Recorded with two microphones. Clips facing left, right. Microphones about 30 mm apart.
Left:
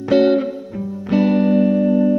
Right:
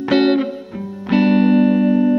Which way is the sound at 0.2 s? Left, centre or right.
Right.